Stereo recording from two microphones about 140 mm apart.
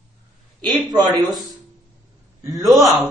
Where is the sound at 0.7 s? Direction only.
30° right (ahead or behind).